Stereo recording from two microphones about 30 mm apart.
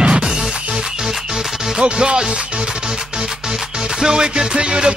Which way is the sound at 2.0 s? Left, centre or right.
Right.